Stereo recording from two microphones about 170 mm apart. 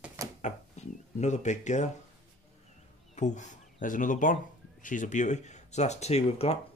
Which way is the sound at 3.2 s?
45° left (ahead or behind).